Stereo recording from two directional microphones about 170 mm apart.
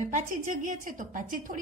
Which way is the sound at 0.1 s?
50° right (ahead or behind).